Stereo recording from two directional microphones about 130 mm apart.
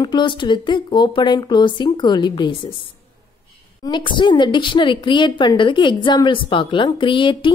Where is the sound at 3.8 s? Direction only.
35° left (ahead or behind).